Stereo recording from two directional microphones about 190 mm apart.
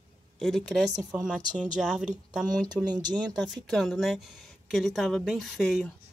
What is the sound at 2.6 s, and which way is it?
Speech, 20° right (ahead or behind).